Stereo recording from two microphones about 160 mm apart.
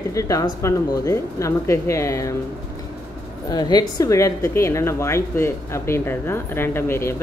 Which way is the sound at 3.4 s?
25° left (ahead or behind).